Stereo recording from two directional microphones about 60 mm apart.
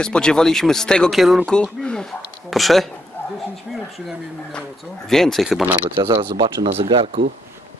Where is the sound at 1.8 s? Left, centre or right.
Centre.